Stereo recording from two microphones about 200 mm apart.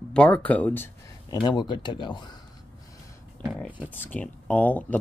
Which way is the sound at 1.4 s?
20° left (ahead or behind).